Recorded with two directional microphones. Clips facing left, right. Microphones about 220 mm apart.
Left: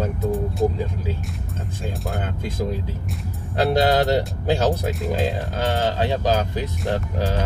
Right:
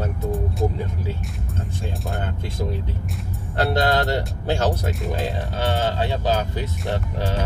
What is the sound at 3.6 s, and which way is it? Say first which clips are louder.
Speech: left 2 dB; 15° left (ahead or behind).